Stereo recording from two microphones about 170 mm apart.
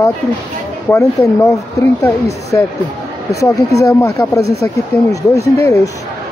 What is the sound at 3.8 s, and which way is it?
Speech, 15° left (ahead or behind).